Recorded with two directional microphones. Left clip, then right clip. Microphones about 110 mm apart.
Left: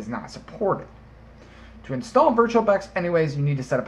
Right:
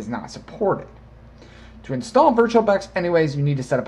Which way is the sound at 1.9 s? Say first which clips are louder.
Right 3 dB; 45° right (ahead or behind).